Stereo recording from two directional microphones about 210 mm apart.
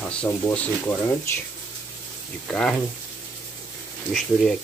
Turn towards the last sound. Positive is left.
turn(degrees=0)  # may be behind; listen again after turning